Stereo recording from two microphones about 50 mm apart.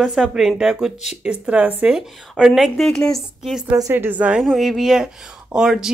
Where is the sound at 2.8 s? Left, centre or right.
Centre.